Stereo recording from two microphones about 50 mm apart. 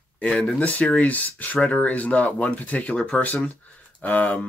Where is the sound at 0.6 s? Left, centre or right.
Left.